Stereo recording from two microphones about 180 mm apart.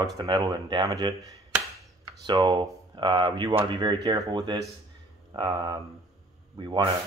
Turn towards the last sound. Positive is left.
turn(degrees=-25)  # may be behind; listen again after turning